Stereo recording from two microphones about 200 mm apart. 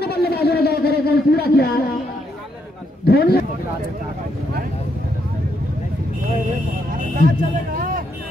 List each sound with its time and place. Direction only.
0.0 s a sound: 50° left (ahead or behind)
3.1 s a man's voice: 50° left (ahead or behind)
7.2 s speech: 40° right (ahead or behind)